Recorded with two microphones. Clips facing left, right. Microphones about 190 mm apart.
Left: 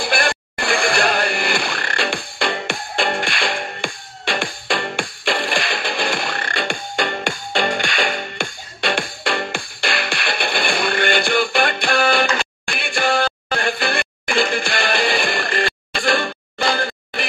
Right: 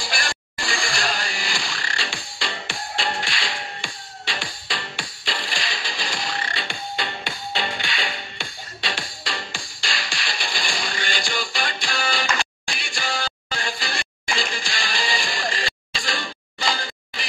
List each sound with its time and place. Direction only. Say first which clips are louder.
0.0 s music: left 9 dB; 60° left (ahead or behind)